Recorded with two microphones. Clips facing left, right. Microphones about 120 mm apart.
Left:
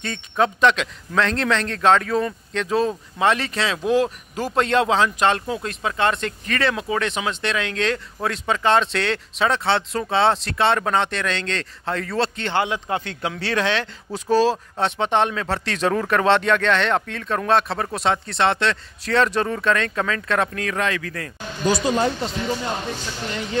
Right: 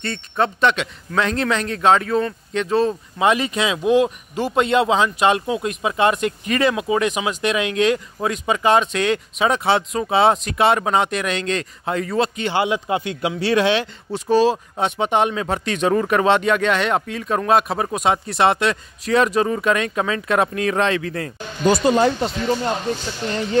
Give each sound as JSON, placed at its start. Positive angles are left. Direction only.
{"t": 0.0, "sound": "a man's voice", "side_deg": 0}
{"t": 21.6, "sound": "speech", "side_deg": -60}